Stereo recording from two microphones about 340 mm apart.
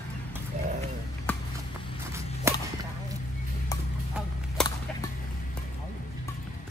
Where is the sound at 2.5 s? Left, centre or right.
Centre.